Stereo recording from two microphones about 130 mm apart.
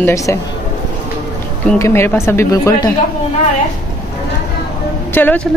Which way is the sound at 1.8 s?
20° left (ahead or behind).